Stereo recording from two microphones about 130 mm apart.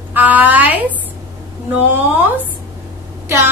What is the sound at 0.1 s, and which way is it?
Speech, 10° right (ahead or behind).